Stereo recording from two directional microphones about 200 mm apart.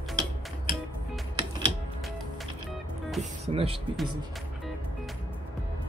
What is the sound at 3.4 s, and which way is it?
Speech, 30° right (ahead or behind).